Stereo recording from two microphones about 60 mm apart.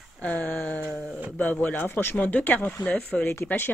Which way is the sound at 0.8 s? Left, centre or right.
Centre.